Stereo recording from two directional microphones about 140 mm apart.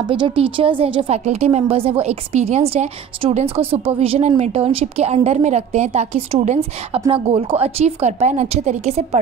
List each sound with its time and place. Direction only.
0.0 s a woman's voice: 35° right (ahead or behind); by 9.2 s 50° right (ahead or behind)